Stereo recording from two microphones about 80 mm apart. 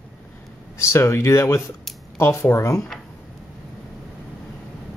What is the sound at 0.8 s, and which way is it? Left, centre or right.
Speech, left.